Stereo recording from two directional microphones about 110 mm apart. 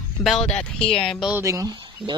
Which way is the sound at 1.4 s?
30° right (ahead or behind).